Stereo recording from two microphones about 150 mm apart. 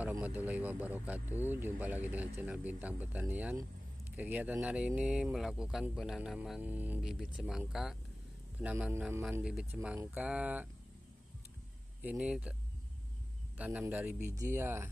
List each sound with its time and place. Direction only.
0.2 s speech: 10° right (ahead or behind)
12.0 s speech: 10° right (ahead or behind)
13.6 s speech: 10° right (ahead or behind)